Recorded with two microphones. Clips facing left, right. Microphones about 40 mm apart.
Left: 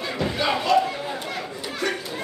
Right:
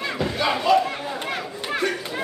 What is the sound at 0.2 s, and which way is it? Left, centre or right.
Speech, centre.